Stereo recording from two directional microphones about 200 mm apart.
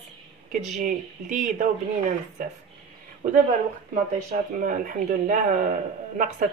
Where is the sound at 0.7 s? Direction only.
40° right (ahead or behind).